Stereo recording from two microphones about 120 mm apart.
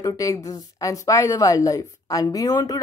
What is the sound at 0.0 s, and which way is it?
A woman's voice, 30° left (ahead or behind).